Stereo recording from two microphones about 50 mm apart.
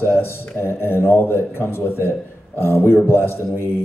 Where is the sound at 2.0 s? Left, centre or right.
Right.